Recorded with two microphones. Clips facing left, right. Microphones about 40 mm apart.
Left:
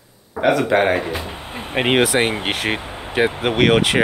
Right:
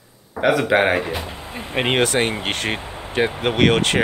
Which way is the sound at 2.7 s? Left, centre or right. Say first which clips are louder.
Left 2 dB; left.